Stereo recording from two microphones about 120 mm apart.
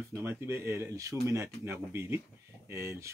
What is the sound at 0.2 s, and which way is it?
Speech, 20° right (ahead or behind).